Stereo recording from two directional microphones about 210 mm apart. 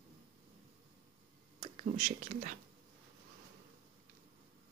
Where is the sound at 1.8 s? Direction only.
35° right (ahead or behind).